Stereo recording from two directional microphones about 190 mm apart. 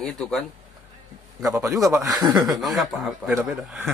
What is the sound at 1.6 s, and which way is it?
Speech, 20° right (ahead or behind).